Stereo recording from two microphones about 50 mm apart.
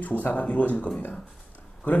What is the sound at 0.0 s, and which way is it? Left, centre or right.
Speech, left.